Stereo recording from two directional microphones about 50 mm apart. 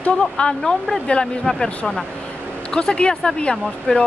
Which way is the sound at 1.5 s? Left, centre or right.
Centre.